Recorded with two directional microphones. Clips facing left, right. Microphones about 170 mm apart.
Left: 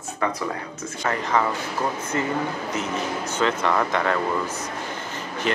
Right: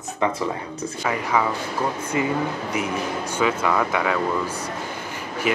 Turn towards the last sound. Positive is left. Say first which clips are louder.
# right 2 dB
turn(degrees=-10)  # may be behind; listen again after turning